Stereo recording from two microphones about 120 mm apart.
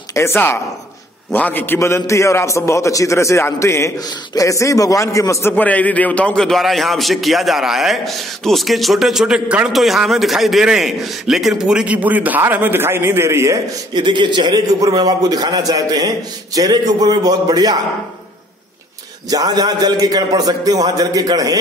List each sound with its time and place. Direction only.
0.1 s a man's voice: 20° left (ahead or behind)
5.5 s a man's voice: 15° left (ahead or behind); by 13.6 s 25° right (ahead or behind)
13.9 s a man's voice: 40° right (ahead or behind)
19.3 s a man's voice: 30° right (ahead or behind)